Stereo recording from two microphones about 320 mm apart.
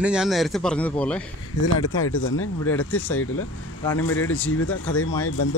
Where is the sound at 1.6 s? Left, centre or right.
Left.